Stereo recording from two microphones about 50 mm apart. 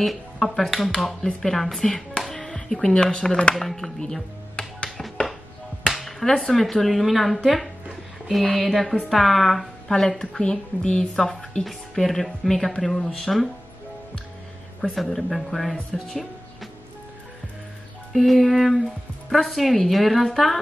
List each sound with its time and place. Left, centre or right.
0.0 s speech: centre
3.7 s music: centre
4.8 s music: centre
5.9 s speech: centre
14.8 s speech: centre
18.1 s speech: centre